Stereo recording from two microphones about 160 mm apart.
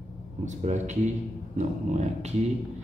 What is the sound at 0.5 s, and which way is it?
Speech, 50° right (ahead or behind).